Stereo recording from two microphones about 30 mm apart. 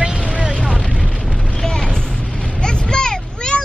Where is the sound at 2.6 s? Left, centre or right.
Left.